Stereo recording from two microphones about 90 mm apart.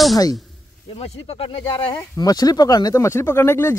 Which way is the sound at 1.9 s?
45° left (ahead or behind).